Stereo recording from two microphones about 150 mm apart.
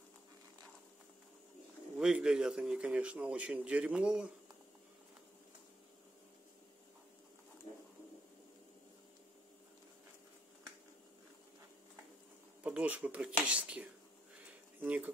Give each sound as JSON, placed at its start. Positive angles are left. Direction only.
{"t": 2.0, "sound": "a man's voice", "side_deg": -5}
{"t": 12.6, "sound": "speech", "side_deg": -10}
{"t": 14.4, "sound": "a sound", "side_deg": -10}